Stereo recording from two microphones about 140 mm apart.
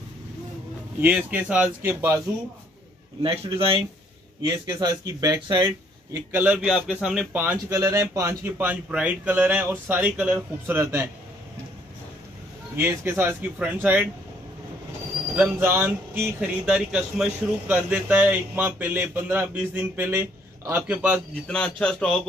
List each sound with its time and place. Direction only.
1.0 s speech: 10° right (ahead or behind)
3.2 s a man's voice: 40° right (ahead or behind)
6.1 s speech: 15° right (ahead or behind)
7.7 s speech: 20° right (ahead or behind)
12.7 s speech: 15° right (ahead or behind)
15.3 s speech: 15° right (ahead or behind)
16.6 s speech: 5° right (ahead or behind)
21.5 s speech: 5° left (ahead or behind)